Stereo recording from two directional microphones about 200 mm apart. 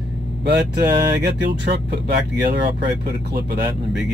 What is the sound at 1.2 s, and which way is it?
Speech, 55° right (ahead or behind).